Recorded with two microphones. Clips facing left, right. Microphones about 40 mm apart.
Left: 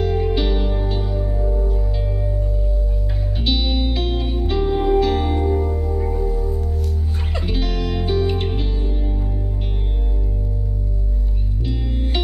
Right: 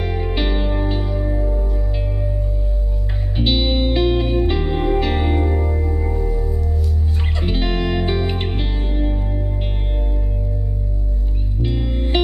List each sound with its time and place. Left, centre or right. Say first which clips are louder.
0.0 s music: left 2 dB; right
3.3 s music: right 4 dB; right
11.6 s music: right 3 dB; right